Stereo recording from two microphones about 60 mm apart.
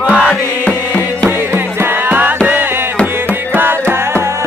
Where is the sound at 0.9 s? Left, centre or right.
Left.